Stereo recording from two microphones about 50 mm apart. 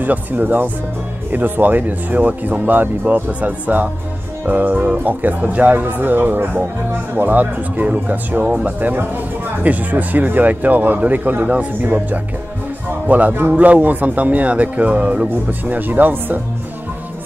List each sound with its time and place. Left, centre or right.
0.0 s speech: right
15.6 s speech: right